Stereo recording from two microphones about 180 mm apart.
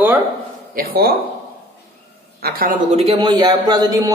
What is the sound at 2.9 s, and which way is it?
Speech, 35° right (ahead or behind).